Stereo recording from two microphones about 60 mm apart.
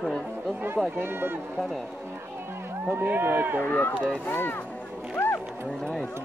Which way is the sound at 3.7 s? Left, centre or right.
Left.